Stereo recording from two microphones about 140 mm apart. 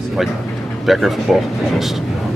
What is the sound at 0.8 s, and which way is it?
Speech, centre (ahead or behind).